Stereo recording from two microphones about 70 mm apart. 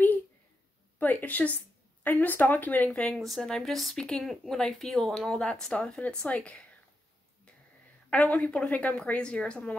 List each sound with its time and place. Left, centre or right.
0.9 s a woman's voice: left
2.9 s speech: centre
8.1 s speech: left